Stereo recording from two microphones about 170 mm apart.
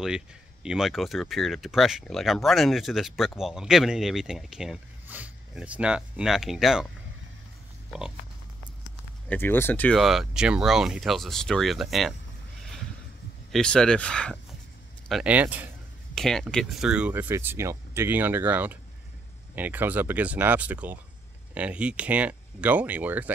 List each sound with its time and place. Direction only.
0.7 s speech: centre (ahead or behind)
9.3 s speech: 10° left (ahead or behind)
13.5 s speech: 5° left (ahead or behind)
16.2 s speech: 5° left (ahead or behind)